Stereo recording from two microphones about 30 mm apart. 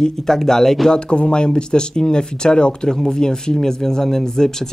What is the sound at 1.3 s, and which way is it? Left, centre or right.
Speech, left.